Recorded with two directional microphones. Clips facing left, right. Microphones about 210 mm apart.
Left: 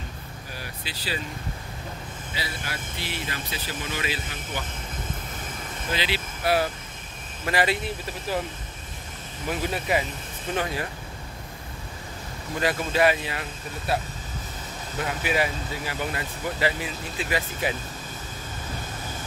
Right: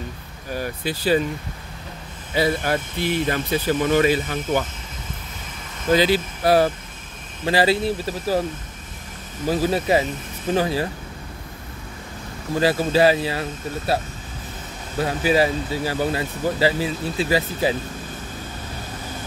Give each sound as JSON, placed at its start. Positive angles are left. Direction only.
{"t": 0.6, "sound": "speech", "side_deg": -50}
{"t": 2.3, "sound": "speech", "side_deg": -50}
{"t": 5.9, "sound": "speech", "side_deg": -45}
{"t": 9.5, "sound": "speech", "side_deg": -35}
{"t": 12.5, "sound": "speech", "side_deg": -30}
{"t": 15.0, "sound": "speech", "side_deg": -35}